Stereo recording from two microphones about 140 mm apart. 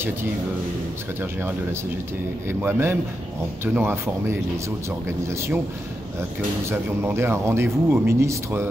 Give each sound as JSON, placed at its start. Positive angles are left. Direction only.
{"t": 2.6, "sound": "speech", "side_deg": -15}
{"t": 6.7, "sound": "speech", "side_deg": -15}